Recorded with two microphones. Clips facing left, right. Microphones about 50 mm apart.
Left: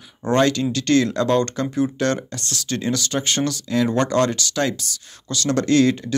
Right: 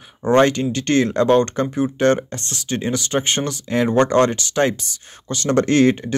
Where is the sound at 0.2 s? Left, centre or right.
Right.